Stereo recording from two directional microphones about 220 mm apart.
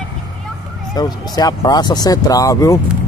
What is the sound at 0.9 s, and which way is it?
Speech, 15° left (ahead or behind).